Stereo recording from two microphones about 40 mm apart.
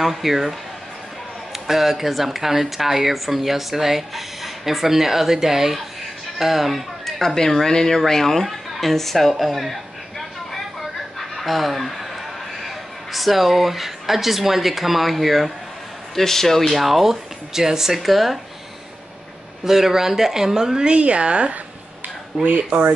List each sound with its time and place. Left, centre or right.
0.0 s speech: centre
11.1 s fowl: centre
12.6 s speech: centre
19.6 s speech: centre; by 21.5 s right
22.4 s speech: right